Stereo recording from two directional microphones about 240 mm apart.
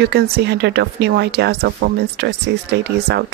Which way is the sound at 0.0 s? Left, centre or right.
Right.